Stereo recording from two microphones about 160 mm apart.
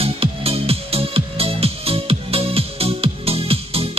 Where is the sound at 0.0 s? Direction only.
35° right (ahead or behind).